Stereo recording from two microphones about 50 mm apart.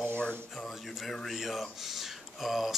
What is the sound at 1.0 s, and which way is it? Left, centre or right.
Speech, centre.